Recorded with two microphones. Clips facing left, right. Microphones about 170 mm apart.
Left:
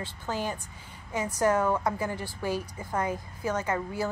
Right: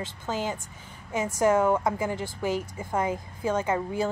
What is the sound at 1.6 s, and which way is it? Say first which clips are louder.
A woman's voice: right 3 dB; 15° right (ahead or behind).